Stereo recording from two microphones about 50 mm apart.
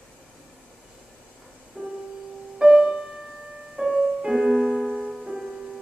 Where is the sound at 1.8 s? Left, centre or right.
Right.